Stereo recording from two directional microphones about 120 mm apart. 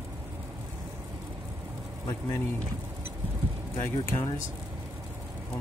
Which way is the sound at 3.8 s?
20° left (ahead or behind).